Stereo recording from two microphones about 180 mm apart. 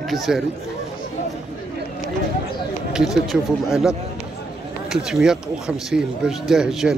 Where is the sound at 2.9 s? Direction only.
5° right (ahead or behind).